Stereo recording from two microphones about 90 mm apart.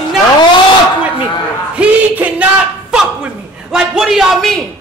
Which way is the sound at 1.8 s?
15° right (ahead or behind).